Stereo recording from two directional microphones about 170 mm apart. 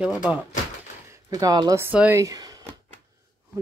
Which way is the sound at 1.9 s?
10° right (ahead or behind).